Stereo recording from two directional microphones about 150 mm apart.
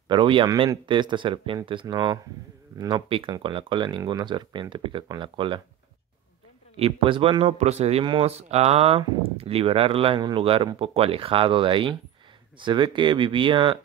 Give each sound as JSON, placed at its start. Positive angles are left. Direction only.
{"t": 0.1, "sound": "speech", "side_deg": -35}
{"t": 6.8, "sound": "speech", "side_deg": -35}
{"t": 7.5, "sound": "speech", "side_deg": -45}